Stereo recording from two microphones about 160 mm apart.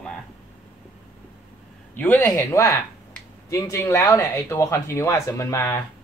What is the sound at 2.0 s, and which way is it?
Speech, 10° left (ahead or behind).